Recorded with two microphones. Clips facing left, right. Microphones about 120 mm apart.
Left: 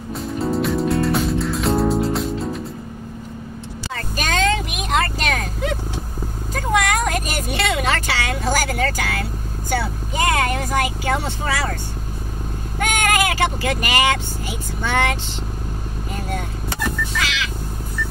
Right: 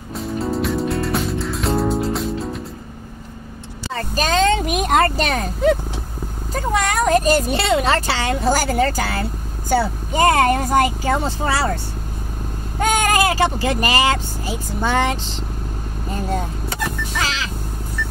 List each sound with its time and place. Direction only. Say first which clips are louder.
0.1 s music: even; centre (ahead or behind)
3.9 s a sound: right 5 dB; 35° right (ahead or behind)
6.5 s speech: even; 35° right (ahead or behind)
17.1 s crow: right 1 dB; 35° right (ahead or behind)
18.0 s vehicle: even; 60° right (ahead or behind)